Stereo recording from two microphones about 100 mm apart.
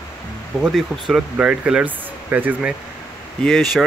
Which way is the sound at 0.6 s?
5° right (ahead or behind).